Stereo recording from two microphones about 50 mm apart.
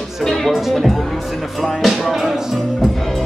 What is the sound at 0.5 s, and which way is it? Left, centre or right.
Music, centre.